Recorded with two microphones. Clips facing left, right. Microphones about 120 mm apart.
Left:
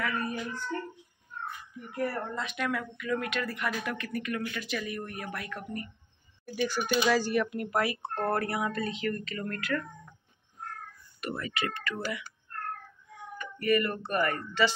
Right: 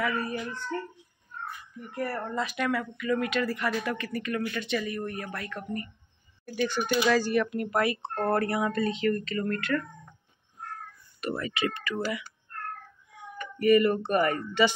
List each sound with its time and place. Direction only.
0.0 s child singing: 5° right (ahead or behind)
2.2 s speech: centre (ahead or behind)
11.1 s speech: 30° right (ahead or behind)
11.8 s speech: 5° right (ahead or behind)
13.1 s speech: 15° right (ahead or behind)